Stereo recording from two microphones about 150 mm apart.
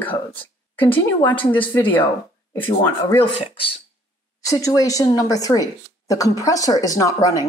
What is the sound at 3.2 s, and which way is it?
Speech, 35° left (ahead or behind).